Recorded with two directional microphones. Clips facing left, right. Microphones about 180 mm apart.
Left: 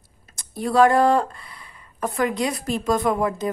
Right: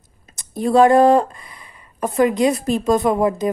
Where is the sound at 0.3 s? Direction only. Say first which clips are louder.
Right 6 dB; 20° right (ahead or behind).